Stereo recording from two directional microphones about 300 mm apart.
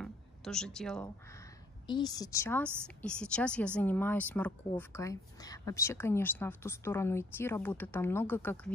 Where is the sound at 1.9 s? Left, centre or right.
Centre.